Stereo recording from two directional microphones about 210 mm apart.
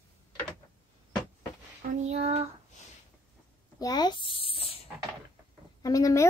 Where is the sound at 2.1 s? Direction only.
30° right (ahead or behind).